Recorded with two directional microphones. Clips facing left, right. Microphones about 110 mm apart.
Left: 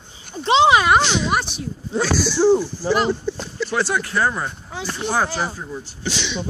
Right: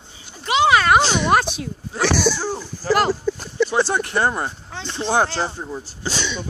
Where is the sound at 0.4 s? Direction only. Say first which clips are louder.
Left 2 dB; 25° left (ahead or behind).